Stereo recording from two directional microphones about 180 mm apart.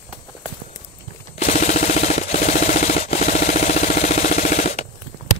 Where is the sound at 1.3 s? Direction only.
40° left (ahead or behind).